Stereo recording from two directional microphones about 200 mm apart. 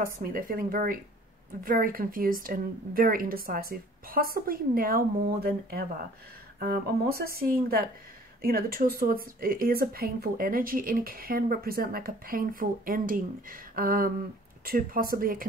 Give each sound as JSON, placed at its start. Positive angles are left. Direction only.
{"t": 0.0, "sound": "speech", "side_deg": -45}